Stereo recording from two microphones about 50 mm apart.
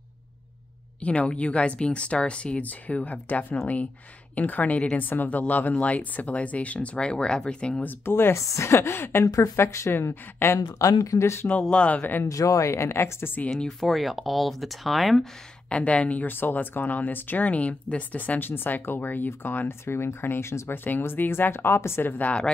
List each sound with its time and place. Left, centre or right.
1.0 s speech: left
8.0 s a woman's voice: left
9.2 s speech: left
10.4 s speech: left
11.7 s speech: left
12.3 s speech: left
13.5 s speech: centre
15.7 s speech: left
16.3 s speech: left
18.5 s speech: left
19.8 s a woman's voice: left
20.7 s speech: left